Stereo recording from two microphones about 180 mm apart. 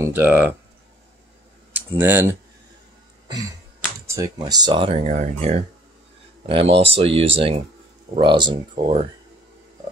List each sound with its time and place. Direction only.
0.0 s speech: 10° right (ahead or behind)
1.7 s speech: 10° right (ahead or behind)
4.1 s speech: 20° right (ahead or behind)
5.1 s speech: 40° right (ahead or behind)